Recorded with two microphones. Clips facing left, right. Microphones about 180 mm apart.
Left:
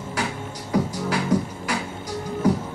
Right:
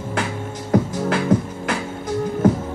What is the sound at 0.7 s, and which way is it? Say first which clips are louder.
Music: right 4 dB; 55° right (ahead or behind).